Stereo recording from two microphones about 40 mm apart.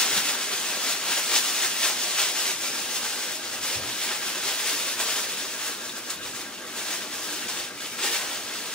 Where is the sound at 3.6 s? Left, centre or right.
Centre.